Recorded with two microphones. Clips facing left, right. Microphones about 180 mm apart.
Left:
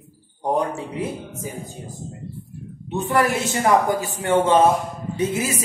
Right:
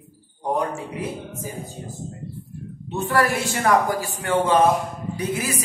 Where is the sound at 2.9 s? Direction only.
20° left (ahead or behind).